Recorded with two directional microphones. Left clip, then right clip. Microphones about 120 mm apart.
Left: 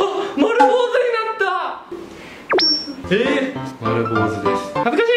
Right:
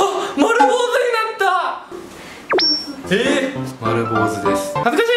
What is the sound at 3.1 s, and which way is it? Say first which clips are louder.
Speech: even; 10° right (ahead or behind).